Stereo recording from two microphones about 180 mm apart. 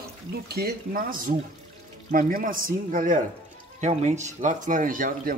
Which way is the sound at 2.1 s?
50° right (ahead or behind).